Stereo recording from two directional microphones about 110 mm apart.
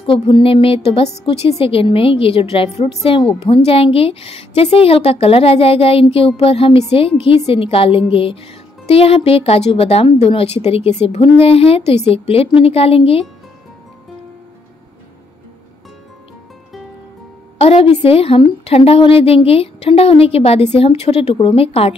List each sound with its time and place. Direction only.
0.0 s a woman's voice: 50° left (ahead or behind)
17.6 s a woman's voice: 65° left (ahead or behind)